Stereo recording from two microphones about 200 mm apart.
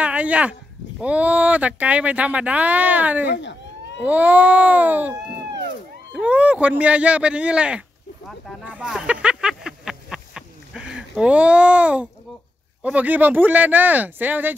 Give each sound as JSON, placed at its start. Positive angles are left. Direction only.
{"t": 0.0, "sound": "speech", "side_deg": -5}
{"t": 3.3, "sound": "police car", "side_deg": 60}
{"t": 4.0, "sound": "speech", "side_deg": -10}
{"t": 6.1, "sound": "speech", "side_deg": -5}
{"t": 8.6, "sound": "a sound", "side_deg": -5}
{"t": 12.8, "sound": "speech", "side_deg": -10}